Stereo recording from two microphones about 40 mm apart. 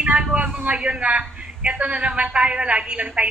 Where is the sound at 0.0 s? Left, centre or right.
Right.